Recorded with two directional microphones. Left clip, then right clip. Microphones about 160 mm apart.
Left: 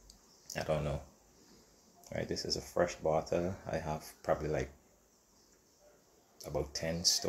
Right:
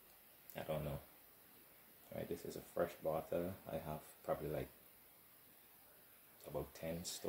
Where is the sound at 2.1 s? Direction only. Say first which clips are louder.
Left 10 dB; 20° right (ahead or behind).